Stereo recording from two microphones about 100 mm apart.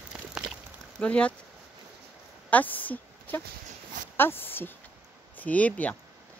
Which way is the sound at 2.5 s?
15° left (ahead or behind).